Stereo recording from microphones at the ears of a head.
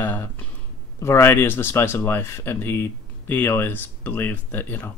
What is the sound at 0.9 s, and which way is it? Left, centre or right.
Speech, left.